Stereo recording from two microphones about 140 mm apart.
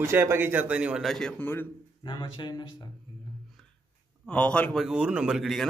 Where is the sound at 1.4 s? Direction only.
15° left (ahead or behind).